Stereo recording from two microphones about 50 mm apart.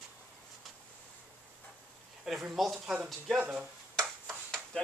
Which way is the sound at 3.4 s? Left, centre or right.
Right.